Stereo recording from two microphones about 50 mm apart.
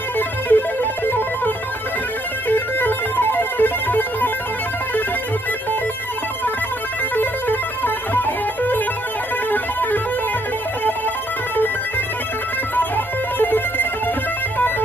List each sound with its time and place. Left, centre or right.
0.5 s music: left
7.2 s music: left
12.7 s music: left